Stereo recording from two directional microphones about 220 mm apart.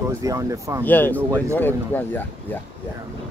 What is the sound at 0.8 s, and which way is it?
Speech, 10° left (ahead or behind).